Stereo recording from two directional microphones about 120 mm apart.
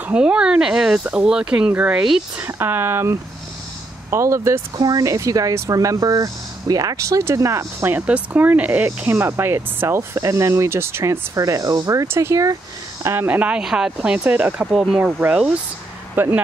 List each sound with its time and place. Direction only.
0.0 s speech: 10° right (ahead or behind)
2.4 s speech: 20° right (ahead or behind); by 15.1 s centre (ahead or behind)
16.2 s speech: 15° right (ahead or behind)